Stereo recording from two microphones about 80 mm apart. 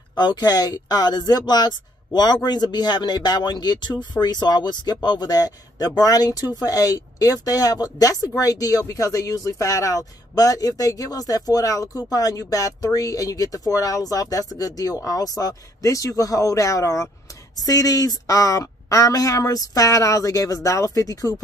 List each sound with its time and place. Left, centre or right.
0.1 s speech: left